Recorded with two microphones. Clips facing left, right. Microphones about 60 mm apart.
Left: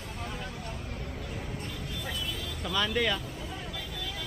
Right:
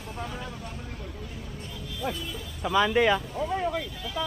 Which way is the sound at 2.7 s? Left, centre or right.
Centre.